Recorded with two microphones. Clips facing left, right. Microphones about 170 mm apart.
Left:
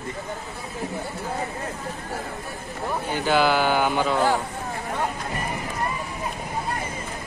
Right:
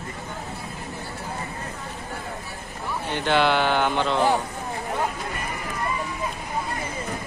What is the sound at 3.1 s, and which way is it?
A man's voice, 5° left (ahead or behind).